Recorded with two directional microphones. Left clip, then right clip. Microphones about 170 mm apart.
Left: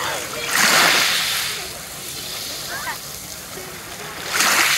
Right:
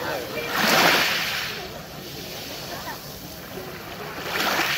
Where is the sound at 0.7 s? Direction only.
10° right (ahead or behind).